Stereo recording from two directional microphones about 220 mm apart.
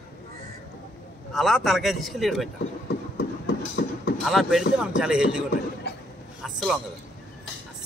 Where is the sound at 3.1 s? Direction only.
45° left (ahead or behind).